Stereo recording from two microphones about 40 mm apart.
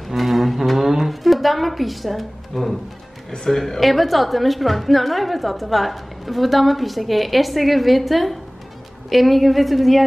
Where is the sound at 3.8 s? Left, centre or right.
Centre.